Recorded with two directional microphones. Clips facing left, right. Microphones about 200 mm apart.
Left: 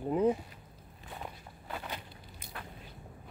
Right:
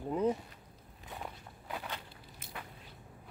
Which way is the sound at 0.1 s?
15° left (ahead or behind).